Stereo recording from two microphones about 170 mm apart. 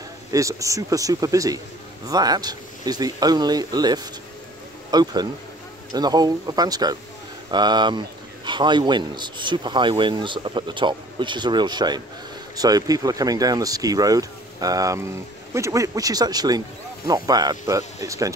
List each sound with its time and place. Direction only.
0.3 s speech: 20° right (ahead or behind)